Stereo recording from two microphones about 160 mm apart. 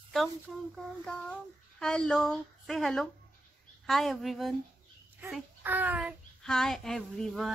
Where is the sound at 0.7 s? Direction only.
5° left (ahead or behind).